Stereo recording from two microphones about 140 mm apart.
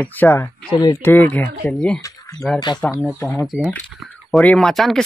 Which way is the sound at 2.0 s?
25° left (ahead or behind).